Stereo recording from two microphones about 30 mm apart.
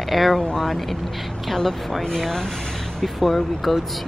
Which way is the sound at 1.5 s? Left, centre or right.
Centre.